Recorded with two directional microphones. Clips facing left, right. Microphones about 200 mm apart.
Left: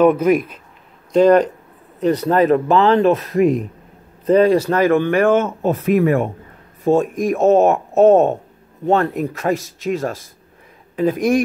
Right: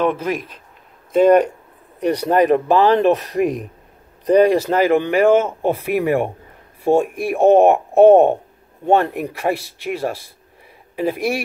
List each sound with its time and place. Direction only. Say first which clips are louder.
0.0 s a man's voice: left 7 dB; 10° left (ahead or behind)
1.1 s a man's voice: even; 10° right (ahead or behind)